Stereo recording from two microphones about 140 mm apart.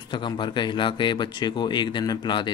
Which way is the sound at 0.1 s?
35° left (ahead or behind).